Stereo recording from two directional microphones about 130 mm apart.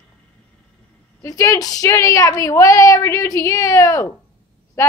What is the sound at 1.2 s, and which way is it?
A woman's voice, 25° left (ahead or behind).